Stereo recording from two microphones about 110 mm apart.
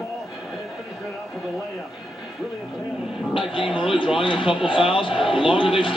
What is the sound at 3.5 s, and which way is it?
Speech, 50° left (ahead or behind).